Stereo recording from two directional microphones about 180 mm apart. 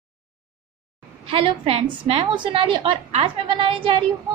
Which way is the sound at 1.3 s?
30° right (ahead or behind).